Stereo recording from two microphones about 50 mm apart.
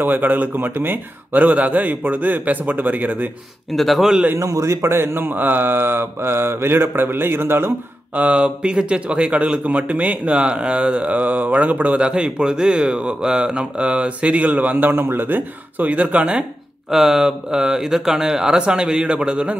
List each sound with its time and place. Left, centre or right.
0.0 s a man's voice: right
3.7 s a man's voice: centre
4.4 s a man's voice: right
4.8 s speech: right
8.1 s speech: right
10.3 s speech: right
12.0 s speech: centre
14.9 s speech: right
15.9 s speech: right
16.9 s speech: centre; by 19.5 s right